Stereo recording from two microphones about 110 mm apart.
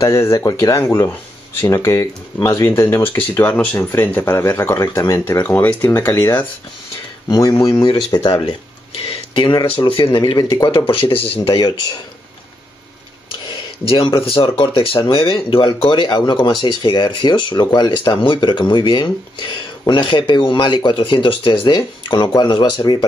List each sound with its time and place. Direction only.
0.0 s speech: 25° left (ahead or behind)
5.9 s speech: 30° left (ahead or behind)
8.5 s a sound: 60° left (ahead or behind)
9.7 s speech: 55° left (ahead or behind)
11.4 s speech: 40° left (ahead or behind)
13.5 s speech: 50° left (ahead or behind)